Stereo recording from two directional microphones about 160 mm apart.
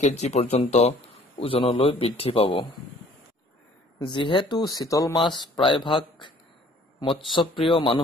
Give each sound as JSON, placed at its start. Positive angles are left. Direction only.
{"t": 0.0, "sound": "speech", "side_deg": 45}
{"t": 4.0, "sound": "speech", "side_deg": 30}